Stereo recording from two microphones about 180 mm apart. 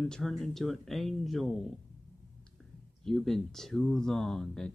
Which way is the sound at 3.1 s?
Centre (ahead or behind).